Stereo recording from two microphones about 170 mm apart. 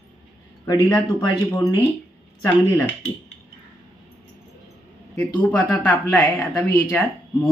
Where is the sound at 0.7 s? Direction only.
20° left (ahead or behind).